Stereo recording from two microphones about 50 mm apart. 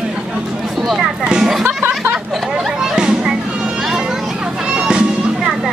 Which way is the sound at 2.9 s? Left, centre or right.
Centre.